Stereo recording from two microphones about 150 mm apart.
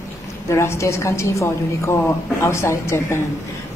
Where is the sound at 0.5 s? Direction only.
20° left (ahead or behind).